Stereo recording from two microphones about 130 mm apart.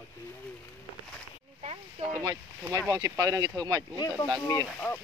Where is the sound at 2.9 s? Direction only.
25° right (ahead or behind).